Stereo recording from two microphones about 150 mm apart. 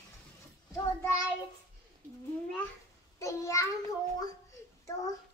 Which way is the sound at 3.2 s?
20° left (ahead or behind).